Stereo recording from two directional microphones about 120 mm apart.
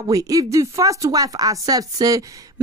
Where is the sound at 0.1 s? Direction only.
30° right (ahead or behind).